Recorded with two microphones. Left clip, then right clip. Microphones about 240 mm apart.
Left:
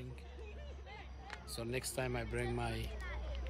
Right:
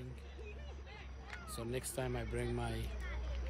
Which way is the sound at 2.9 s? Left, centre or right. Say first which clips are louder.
Left 1 dB; left.